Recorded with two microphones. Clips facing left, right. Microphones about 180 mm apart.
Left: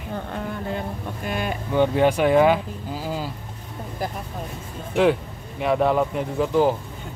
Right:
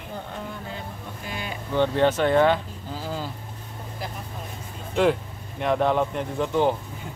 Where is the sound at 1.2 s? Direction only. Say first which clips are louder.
Left 8 dB; 55° left (ahead or behind).